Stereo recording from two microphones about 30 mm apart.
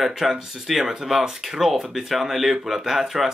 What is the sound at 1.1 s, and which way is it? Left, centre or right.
Speech, centre.